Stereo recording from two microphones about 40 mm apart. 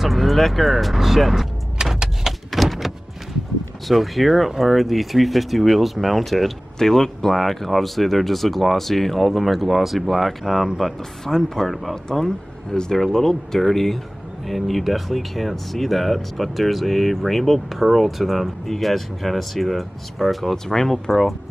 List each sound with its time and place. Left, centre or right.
0.0 s speech: centre
1.8 s vehicle: centre
2.2 s a sound: centre
3.8 s speech: centre
6.8 s speech: centre
11.0 s speech: centre
11.6 s speech: centre
11.9 s speech: centre
20.5 s speech: centre